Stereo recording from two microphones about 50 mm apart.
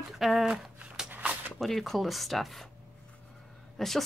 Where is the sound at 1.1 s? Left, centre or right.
Right.